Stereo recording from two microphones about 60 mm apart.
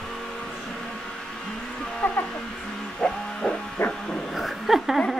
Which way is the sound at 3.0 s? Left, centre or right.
Centre.